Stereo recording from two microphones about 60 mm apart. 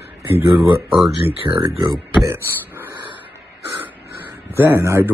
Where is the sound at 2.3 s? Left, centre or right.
Right.